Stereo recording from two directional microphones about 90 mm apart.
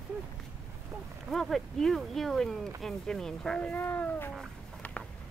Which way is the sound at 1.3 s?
5° left (ahead or behind).